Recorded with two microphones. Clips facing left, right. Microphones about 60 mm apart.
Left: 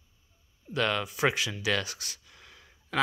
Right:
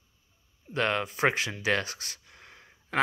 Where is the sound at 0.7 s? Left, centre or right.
Right.